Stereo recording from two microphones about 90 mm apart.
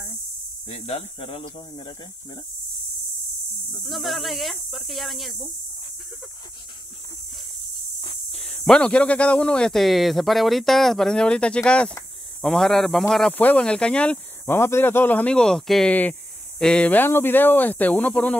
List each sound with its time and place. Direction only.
0.7 s speech: 90° left
3.8 s speech: centre (ahead or behind)
8.3 s speech: 5° left (ahead or behind)
13.3 s speech: 20° left (ahead or behind)
14.4 s speech: 25° left (ahead or behind); by 15.9 s 5° left (ahead or behind)
15.9 s speech: 15° left (ahead or behind)